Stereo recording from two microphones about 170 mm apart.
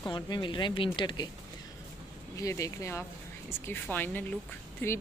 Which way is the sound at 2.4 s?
20° left (ahead or behind).